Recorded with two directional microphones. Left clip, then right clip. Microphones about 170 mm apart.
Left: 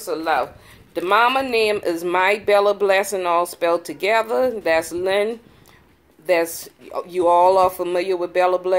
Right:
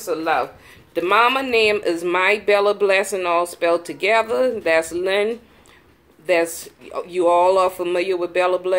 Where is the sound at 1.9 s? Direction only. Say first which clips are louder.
Even; 35° left (ahead or behind).